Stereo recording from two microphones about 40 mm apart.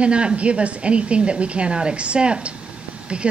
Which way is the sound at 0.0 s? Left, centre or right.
Right.